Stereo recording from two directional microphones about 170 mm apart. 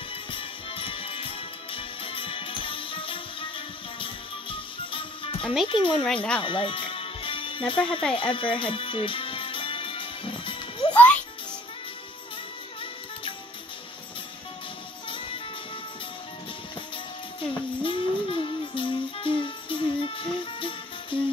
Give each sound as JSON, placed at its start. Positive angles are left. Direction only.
{"t": 0.1, "sound": "music", "side_deg": 30}
{"t": 5.7, "sound": "speech", "side_deg": 30}
{"t": 6.4, "sound": "music", "side_deg": 30}
{"t": 15.0, "sound": "music", "side_deg": 30}
{"t": 16.9, "sound": "music", "side_deg": 30}